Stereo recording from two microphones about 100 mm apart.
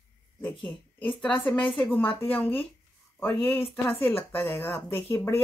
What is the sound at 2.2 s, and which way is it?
Speech, 20° left (ahead or behind).